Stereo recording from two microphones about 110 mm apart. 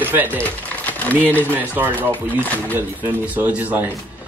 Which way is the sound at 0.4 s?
15° left (ahead or behind).